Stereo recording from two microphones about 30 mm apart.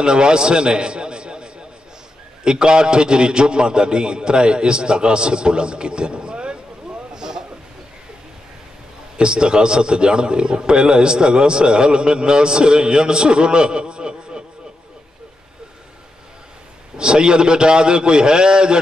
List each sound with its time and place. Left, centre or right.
0.0 s a man's voice: right
7.2 s a sound: right
9.1 s a man's voice: right
16.9 s a man's voice: right